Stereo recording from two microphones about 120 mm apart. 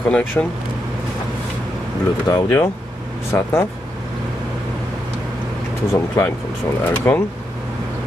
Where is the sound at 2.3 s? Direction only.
30° left (ahead or behind).